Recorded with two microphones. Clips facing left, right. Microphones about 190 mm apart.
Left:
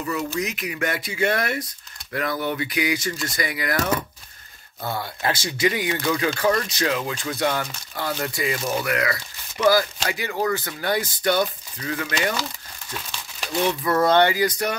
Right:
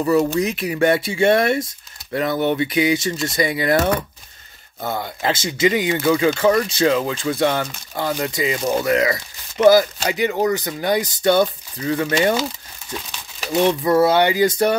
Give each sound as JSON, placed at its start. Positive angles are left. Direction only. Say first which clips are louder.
{"t": 0.0, "sound": "speech", "louder": "right 9 dB", "side_deg": -40}
{"t": 12.9, "sound": "crumpling", "louder": "right 3 dB", "side_deg": -10}
{"t": 13.9, "sound": "speech", "louder": "right 1 dB", "side_deg": -10}
{"t": 14.3, "sound": "speech", "louder": "right 7 dB", "side_deg": -25}